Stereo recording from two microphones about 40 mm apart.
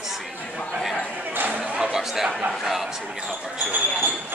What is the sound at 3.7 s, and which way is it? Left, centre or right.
Speech, right.